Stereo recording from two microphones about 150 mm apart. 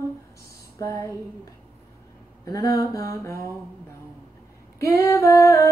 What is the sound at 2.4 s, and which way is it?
Humming, 25° left (ahead or behind).